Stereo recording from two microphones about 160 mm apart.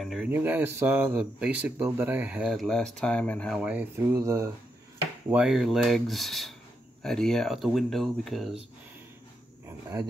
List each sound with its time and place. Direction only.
0.0 s speech: centre (ahead or behind)
0.3 s speech: 10° right (ahead or behind); by 3.6 s 5° left (ahead or behind)
3.6 s speech: 15° right (ahead or behind)
5.3 s speech: 5° right (ahead or behind)